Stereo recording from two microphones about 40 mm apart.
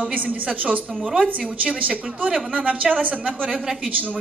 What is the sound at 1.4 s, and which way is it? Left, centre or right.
Speech, right.